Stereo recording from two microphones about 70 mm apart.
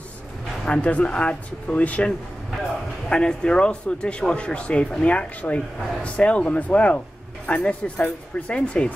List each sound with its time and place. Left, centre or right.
0.7 s speech: centre